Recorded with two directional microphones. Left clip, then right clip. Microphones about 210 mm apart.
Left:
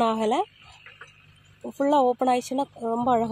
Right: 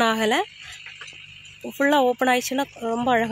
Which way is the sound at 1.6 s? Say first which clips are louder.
Right 2 dB; 5° left (ahead or behind).